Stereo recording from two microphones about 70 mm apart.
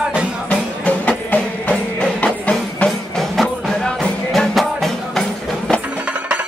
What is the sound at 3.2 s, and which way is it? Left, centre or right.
Music, centre.